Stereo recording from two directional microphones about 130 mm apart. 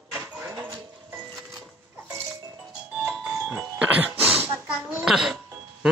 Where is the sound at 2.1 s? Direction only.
15° right (ahead or behind).